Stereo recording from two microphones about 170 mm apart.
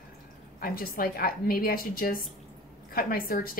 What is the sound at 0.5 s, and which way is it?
A woman's voice, 60° left (ahead or behind).